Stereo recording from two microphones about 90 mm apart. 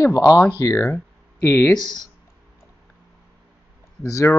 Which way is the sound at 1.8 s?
55° left (ahead or behind).